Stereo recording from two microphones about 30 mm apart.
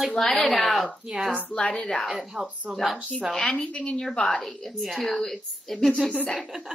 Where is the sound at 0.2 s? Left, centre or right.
Centre.